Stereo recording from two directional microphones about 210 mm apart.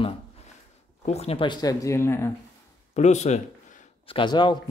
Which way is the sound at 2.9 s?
35° left (ahead or behind).